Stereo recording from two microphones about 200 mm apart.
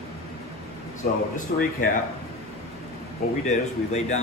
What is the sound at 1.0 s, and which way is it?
Speech, 45° left (ahead or behind).